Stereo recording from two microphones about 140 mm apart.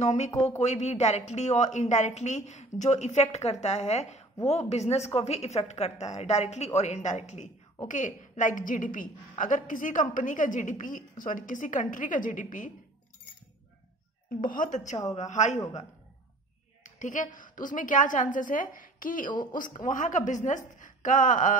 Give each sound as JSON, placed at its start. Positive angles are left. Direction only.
{"t": 0.0, "sound": "a woman's voice", "side_deg": 55}
{"t": 14.4, "sound": "a woman's voice", "side_deg": 70}
{"t": 15.1, "sound": "a woman's voice", "side_deg": 55}
{"t": 16.8, "sound": "a woman's voice", "side_deg": 65}